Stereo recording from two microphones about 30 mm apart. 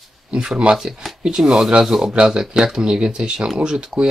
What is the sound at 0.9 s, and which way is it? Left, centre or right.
Speech, centre.